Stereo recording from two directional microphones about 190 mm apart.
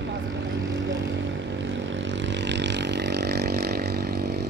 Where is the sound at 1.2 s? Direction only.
70° right (ahead or behind).